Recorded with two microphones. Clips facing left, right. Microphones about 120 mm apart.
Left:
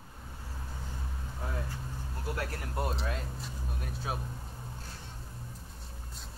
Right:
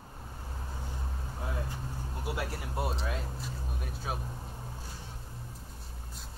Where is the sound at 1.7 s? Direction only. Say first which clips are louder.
Right 2 dB; 15° right (ahead or behind).